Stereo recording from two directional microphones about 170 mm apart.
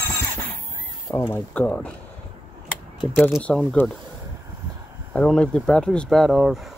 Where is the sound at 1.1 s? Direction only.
10° left (ahead or behind).